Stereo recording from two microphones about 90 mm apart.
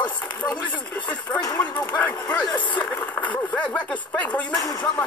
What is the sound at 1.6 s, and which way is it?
Speech, 20° left (ahead or behind).